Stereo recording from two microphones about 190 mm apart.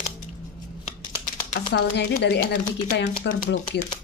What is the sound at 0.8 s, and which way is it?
Scissors, 40° left (ahead or behind).